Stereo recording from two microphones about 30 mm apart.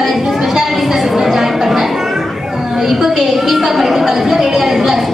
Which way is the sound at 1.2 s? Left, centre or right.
Centre.